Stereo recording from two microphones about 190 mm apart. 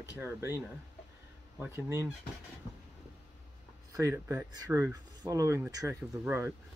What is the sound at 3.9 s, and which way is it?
Speech, 15° right (ahead or behind).